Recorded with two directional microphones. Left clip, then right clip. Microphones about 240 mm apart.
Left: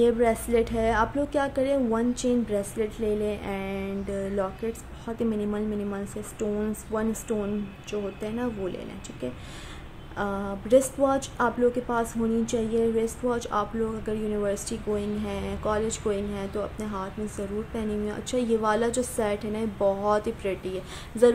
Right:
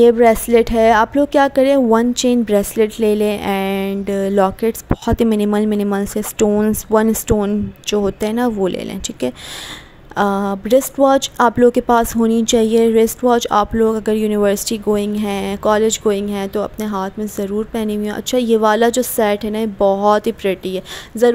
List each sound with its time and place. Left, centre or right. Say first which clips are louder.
0.0 s a woman's voice: right 12 dB; right